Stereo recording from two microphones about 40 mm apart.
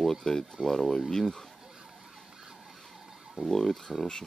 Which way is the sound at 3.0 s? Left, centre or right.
Centre.